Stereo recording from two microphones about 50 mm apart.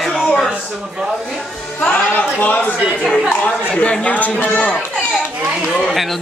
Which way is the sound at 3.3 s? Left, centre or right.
Left.